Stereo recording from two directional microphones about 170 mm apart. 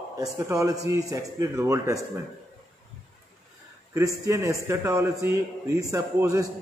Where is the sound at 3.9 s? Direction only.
15° right (ahead or behind).